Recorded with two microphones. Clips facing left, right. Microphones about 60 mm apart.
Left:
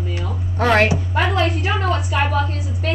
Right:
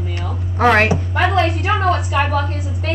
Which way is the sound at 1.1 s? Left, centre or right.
Right.